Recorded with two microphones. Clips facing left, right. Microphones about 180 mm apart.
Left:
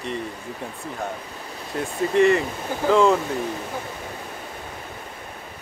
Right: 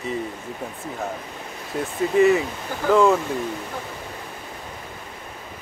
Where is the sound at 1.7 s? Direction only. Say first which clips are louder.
Right 1 dB; centre (ahead or behind).